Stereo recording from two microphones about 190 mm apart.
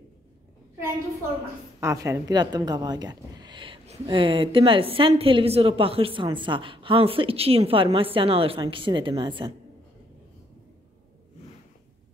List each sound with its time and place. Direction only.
1.8 s a woman's voice: 15° right (ahead or behind)